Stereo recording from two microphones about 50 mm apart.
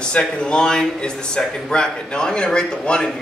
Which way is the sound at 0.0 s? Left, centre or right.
Centre.